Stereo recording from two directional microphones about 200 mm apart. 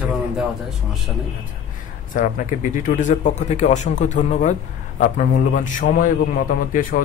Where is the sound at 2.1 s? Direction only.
40° left (ahead or behind).